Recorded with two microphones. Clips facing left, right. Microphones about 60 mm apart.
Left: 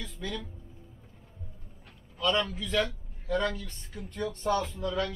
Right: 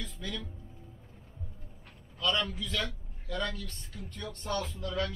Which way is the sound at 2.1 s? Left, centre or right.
Left.